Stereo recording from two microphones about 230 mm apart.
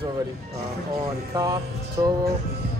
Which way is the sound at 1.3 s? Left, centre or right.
Centre.